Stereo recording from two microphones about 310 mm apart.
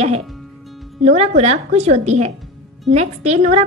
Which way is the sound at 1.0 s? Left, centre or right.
Right.